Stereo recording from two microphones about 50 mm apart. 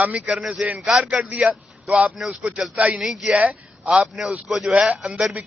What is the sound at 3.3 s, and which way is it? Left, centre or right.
Speech, right.